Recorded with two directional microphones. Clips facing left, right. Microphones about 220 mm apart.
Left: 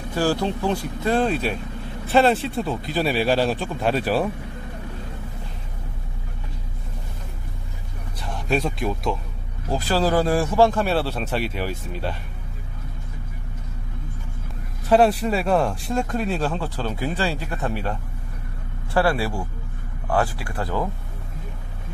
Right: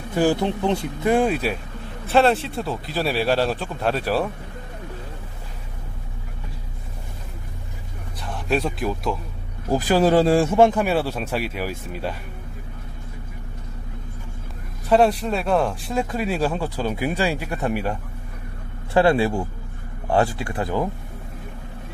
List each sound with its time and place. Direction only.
0.1 s speech: 20° right (ahead or behind); by 4.3 s centre (ahead or behind)
8.2 s speech: centre (ahead or behind)
9.7 s speech: 15° right (ahead or behind)
14.9 s speech: centre (ahead or behind)
18.9 s speech: 20° right (ahead or behind)